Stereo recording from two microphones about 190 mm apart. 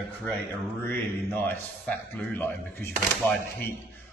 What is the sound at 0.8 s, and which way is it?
A man's voice, 10° left (ahead or behind).